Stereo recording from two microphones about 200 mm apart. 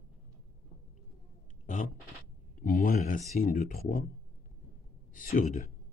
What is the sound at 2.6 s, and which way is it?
Speech, 45° left (ahead or behind).